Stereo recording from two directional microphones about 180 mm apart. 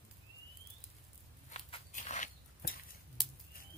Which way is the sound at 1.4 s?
40° left (ahead or behind).